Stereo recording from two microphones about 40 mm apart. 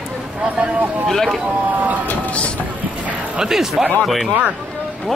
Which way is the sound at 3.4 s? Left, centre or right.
Centre.